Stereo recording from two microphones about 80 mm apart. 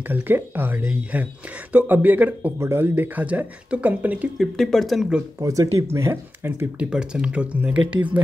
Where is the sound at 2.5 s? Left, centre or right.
Right.